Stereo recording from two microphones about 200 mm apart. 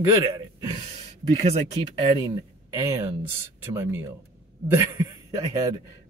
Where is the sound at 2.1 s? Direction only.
20° right (ahead or behind).